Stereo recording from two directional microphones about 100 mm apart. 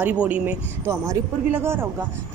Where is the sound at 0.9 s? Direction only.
30° right (ahead or behind).